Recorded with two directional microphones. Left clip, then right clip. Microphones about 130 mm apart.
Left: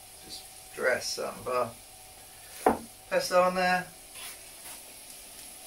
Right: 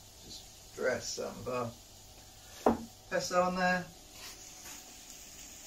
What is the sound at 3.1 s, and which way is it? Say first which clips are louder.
Speech: left 6 dB; centre (ahead or behind).